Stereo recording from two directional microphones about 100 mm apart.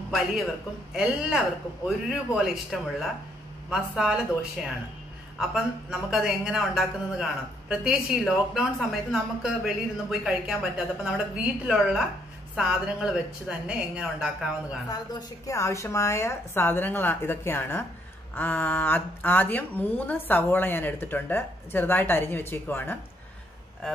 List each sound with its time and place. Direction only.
0.9 s a woman's voice: 5° right (ahead or behind)
14.9 s speech: 35° left (ahead or behind); by 22.9 s 20° left (ahead or behind)